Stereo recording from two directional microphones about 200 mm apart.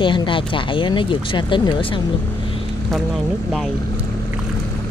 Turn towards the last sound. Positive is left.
turn(degrees=0)  # may be behind; listen again after turning